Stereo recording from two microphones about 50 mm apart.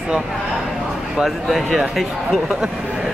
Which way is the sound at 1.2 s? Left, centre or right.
Centre.